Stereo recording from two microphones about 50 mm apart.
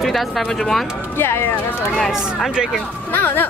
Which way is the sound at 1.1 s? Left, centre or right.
Left.